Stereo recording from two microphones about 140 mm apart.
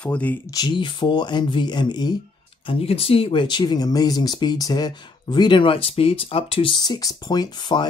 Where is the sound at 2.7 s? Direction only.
45° left (ahead or behind).